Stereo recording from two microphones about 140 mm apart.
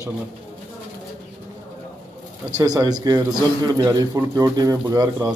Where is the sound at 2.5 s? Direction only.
25° right (ahead or behind).